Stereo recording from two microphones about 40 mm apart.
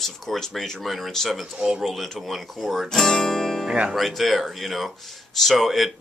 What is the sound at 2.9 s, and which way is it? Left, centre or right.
Speech, centre.